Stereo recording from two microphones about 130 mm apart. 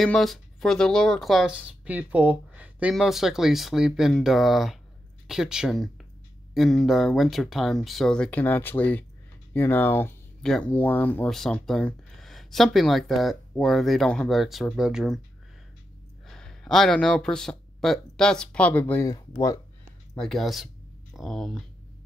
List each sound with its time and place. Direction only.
0.0 s speech: centre (ahead or behind); by 10.1 s 15° left (ahead or behind)
10.4 s speech: 5° left (ahead or behind)
11.2 s speech: centre (ahead or behind)
16.3 s speech: 5° left (ahead or behind)
19.0 s speech: 30° left (ahead or behind)
20.2 s speech: centre (ahead or behind)